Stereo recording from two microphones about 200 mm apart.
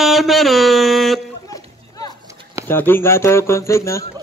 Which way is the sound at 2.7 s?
10° left (ahead or behind).